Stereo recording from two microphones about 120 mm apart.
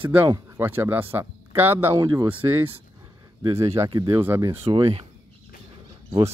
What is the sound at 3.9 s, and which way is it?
Speech, 35° right (ahead or behind).